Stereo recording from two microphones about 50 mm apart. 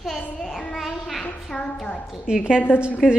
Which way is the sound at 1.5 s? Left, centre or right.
Centre.